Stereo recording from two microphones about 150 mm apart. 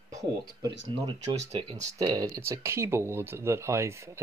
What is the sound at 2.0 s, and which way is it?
Speech, 20° right (ahead or behind).